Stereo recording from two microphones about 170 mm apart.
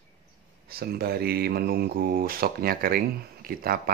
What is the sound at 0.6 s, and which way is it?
Speech, 65° right (ahead or behind).